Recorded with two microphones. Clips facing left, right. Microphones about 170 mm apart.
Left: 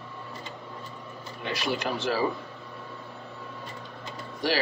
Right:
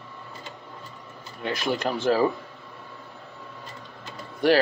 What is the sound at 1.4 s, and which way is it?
Speech, 50° right (ahead or behind).